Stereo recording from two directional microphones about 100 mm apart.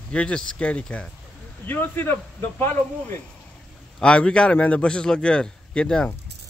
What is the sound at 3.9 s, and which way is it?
A man's voice, 10° left (ahead or behind).